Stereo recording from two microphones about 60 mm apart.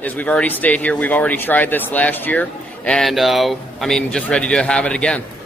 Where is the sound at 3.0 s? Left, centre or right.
Centre.